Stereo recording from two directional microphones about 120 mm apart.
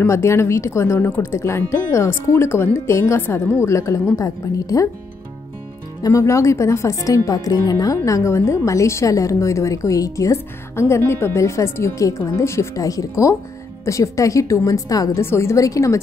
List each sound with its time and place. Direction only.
0.0 s speech: 25° left (ahead or behind)
6.0 s speech: 25° left (ahead or behind)